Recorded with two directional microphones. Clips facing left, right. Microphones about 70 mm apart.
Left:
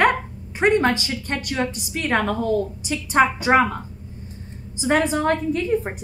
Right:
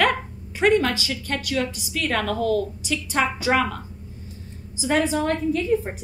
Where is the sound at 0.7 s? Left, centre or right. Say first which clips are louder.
Left 2 dB; left.